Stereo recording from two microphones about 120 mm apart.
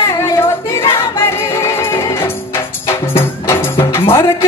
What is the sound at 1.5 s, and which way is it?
Music, 25° left (ahead or behind).